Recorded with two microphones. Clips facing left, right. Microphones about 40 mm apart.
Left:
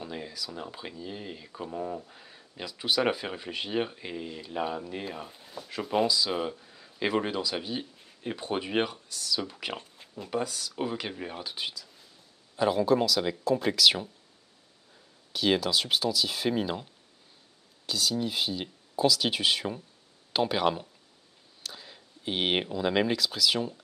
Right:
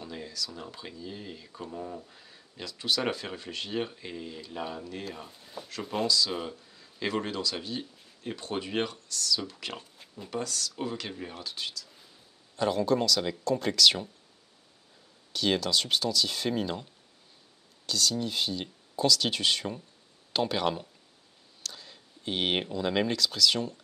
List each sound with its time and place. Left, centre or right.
0.0 s speech: centre
15.3 s speech: centre